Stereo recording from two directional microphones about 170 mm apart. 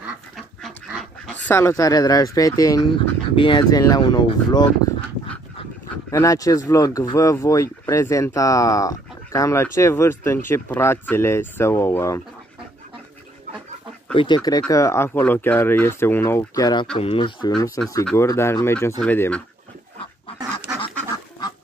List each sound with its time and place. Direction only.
0.6 s dog: centre (ahead or behind)
1.5 s speech: 15° left (ahead or behind)
14.1 s speech: 25° left (ahead or behind); by 19.4 s 10° left (ahead or behind)